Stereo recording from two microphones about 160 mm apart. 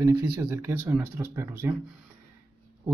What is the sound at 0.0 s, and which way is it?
Speech, 15° right (ahead or behind).